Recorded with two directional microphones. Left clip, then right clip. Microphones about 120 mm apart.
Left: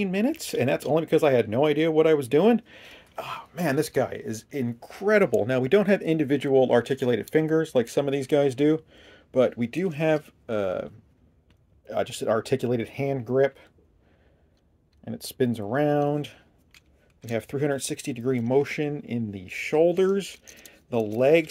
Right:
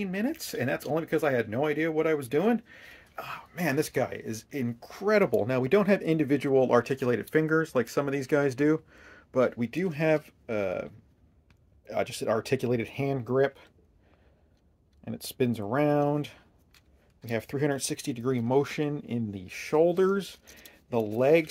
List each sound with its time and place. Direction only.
0.0 s speech: 50° left (ahead or behind)
3.7 s speech: 20° left (ahead or behind); by 13.7 s 5° right (ahead or behind)
15.0 s speech: centre (ahead or behind)